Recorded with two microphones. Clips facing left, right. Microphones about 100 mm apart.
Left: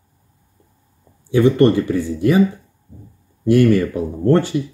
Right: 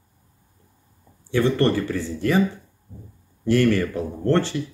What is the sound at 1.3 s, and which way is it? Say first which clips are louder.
Speech: left 7 dB; 15° left (ahead or behind).